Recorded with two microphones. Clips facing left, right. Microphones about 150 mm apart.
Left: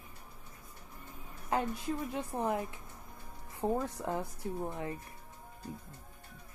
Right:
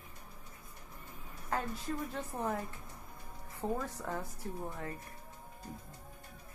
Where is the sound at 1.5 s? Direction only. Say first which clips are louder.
Left 4 dB; 15° left (ahead or behind).